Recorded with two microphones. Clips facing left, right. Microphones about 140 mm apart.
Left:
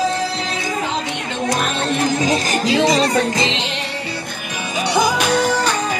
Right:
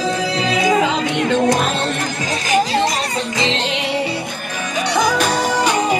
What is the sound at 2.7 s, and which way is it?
Speech, 80° left.